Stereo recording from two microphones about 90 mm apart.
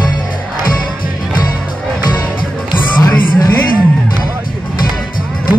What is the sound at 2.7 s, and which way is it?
Music, 45° left (ahead or behind).